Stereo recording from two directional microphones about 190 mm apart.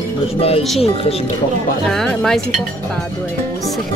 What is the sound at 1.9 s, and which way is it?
Speech, centre (ahead or behind).